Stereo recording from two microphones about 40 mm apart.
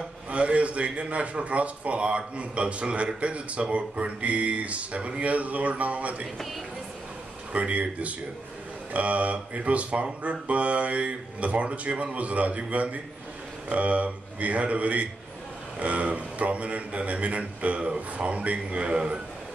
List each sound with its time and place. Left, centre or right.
0.3 s a man's voice: right
7.6 s a man's voice: right